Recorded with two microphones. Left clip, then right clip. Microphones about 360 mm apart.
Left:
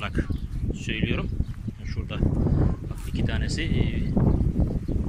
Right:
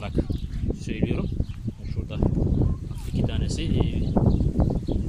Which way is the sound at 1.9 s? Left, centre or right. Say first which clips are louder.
Right 1 dB; centre.